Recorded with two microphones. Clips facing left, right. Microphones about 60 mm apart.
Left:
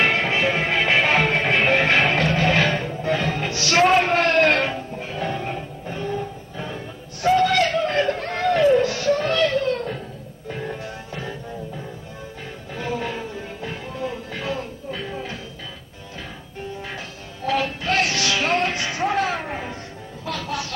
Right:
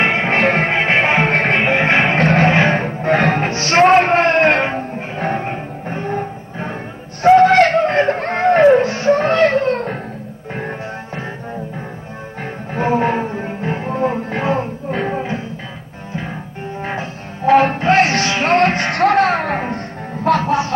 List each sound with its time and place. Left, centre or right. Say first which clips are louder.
0.0 s music: right 4 dB; right
0.3 s music: right 6 dB; right
0.7 s music: right 4 dB; right
1.3 s music: right 5 dB; right
1.6 s music: right 3 dB; right
12.7 s music: right 11 dB; right
18.6 s music: right 9 dB; right